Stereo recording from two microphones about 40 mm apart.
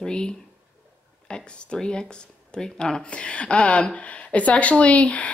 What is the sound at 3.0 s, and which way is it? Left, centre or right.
Speech, left.